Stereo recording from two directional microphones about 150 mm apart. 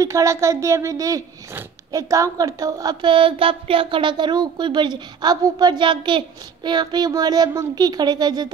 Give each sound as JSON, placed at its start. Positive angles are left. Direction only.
{"t": 0.0, "sound": "speech", "side_deg": -20}